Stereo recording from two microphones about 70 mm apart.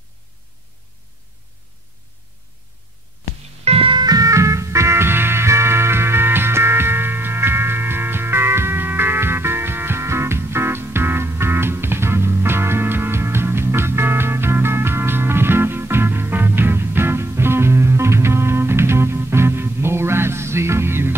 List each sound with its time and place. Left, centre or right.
4.0 s music: right